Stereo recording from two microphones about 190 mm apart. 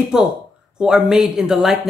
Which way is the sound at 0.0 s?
Centre (ahead or behind).